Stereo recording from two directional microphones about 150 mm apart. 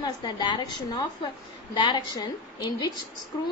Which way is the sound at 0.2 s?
30° left (ahead or behind).